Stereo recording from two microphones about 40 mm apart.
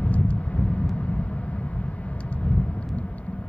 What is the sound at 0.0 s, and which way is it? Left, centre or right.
Vehicle, left.